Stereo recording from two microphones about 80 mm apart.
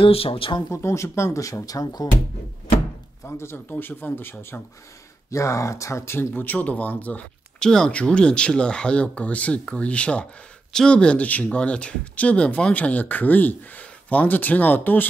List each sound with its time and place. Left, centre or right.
0.0 s speech: left
0.6 s speech: left
3.3 s speech: left